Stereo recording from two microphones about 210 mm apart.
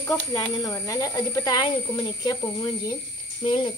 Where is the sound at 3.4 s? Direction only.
25° left (ahead or behind).